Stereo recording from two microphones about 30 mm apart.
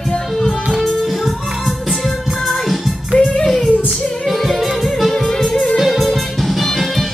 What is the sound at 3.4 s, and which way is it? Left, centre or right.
Child singing, centre.